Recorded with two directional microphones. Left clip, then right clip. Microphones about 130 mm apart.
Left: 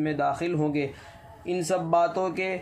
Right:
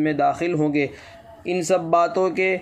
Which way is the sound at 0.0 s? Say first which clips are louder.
Right 6 dB; 25° right (ahead or behind).